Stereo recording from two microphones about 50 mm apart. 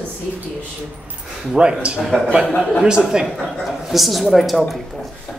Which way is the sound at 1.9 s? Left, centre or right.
Centre.